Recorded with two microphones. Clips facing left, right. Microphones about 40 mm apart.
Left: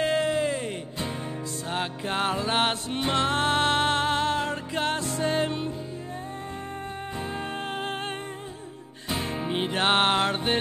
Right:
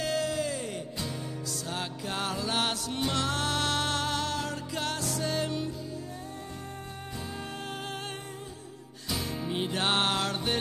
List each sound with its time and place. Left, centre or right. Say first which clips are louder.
0.0 s music: left 6 dB; left
7.3 s music: left 6 dB; left
9.1 s music: left 4 dB; left